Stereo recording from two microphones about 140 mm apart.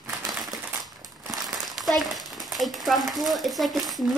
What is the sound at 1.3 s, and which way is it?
Crumpling, centre (ahead or behind).